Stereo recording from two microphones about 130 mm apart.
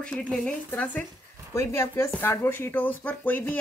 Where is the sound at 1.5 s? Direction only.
20° left (ahead or behind).